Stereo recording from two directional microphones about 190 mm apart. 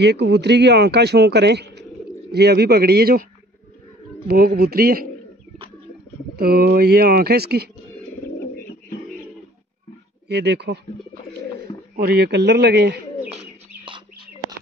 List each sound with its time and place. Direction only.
0.0 s a man's voice: 60° right (ahead or behind)
4.3 s speech: 55° right (ahead or behind)
6.3 s a man's voice: 55° right (ahead or behind)
10.2 s a man's voice: 60° right (ahead or behind)
12.0 s a man's voice: 55° right (ahead or behind)